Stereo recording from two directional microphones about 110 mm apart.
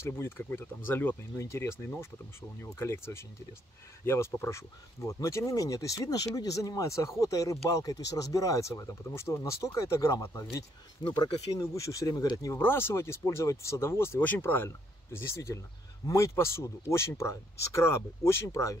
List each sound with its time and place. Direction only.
0.0 s speech: 20° left (ahead or behind); by 11.2 s 40° left (ahead or behind)
11.5 s speech: 30° left (ahead or behind)
12.5 s speech: 20° left (ahead or behind)